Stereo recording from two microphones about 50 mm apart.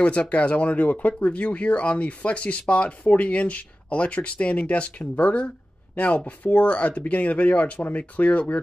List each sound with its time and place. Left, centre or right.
0.0 s speech: left